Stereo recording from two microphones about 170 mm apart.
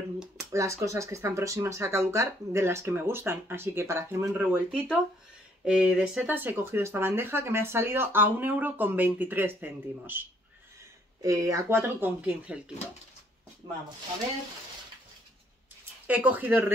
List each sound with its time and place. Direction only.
0.4 s speech: 15° right (ahead or behind)
11.2 s speech: 20° right (ahead or behind)
15.8 s speech: 10° right (ahead or behind)